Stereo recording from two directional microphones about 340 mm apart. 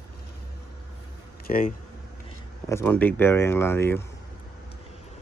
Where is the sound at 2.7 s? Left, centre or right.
Centre.